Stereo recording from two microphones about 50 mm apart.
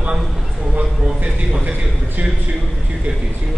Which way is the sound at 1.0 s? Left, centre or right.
Centre.